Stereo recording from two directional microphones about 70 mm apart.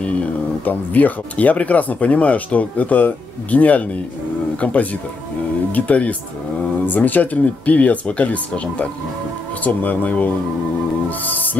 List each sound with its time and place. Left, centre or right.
0.0 s speech: centre
5.7 s speech: left
11.1 s music: left